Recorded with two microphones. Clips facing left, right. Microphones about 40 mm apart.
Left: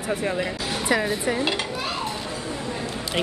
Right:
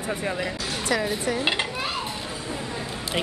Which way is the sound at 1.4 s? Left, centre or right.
Right.